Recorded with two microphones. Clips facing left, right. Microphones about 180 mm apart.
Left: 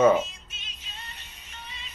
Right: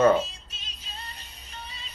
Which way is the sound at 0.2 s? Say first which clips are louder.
Even; 35° right (ahead or behind).